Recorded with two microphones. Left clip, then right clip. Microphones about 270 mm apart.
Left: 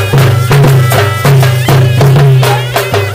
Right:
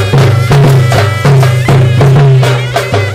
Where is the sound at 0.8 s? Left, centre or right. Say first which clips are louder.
Left 1 dB; left.